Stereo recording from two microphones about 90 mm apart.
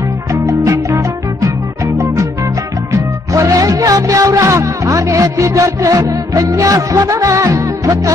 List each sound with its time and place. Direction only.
0.3 s music: 35° right (ahead or behind)
2.9 s music: 35° right (ahead or behind)